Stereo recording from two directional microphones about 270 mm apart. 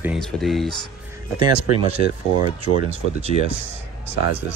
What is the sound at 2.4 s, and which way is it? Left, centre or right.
Speech, right.